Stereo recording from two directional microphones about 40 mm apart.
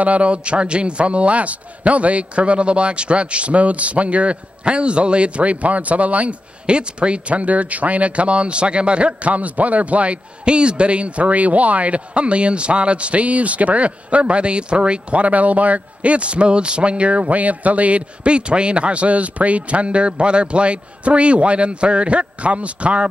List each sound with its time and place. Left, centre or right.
0.0 s speech: right
6.6 s speech: right